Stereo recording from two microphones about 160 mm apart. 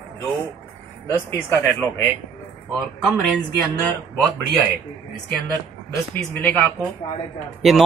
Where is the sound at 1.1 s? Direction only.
15° left (ahead or behind).